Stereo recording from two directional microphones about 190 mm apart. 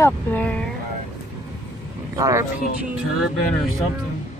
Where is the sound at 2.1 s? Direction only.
15° right (ahead or behind).